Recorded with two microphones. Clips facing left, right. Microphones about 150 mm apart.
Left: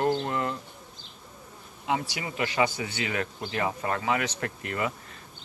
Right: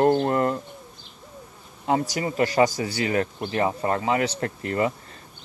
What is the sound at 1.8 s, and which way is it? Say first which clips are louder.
Speech: right 6 dB; 40° right (ahead or behind).